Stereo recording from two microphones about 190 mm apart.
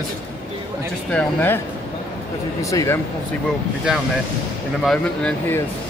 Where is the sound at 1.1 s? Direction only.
10° left (ahead or behind).